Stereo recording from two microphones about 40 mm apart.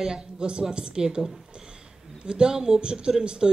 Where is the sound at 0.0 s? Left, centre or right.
Centre.